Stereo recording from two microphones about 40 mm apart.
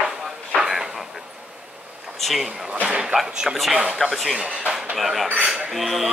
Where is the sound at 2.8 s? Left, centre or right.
Right.